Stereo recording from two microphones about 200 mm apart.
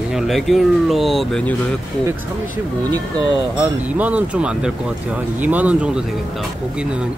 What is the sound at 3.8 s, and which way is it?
Speech, 5° right (ahead or behind).